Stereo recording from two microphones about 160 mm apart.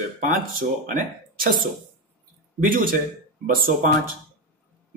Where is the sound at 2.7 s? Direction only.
65° right (ahead or behind).